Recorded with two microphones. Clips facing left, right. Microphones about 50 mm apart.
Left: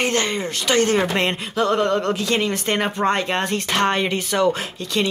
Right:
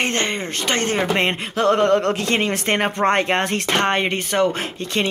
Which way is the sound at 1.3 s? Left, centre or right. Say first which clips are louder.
Right 2 dB; right.